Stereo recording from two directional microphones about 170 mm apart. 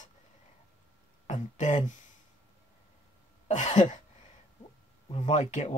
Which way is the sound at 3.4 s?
45° left (ahead or behind).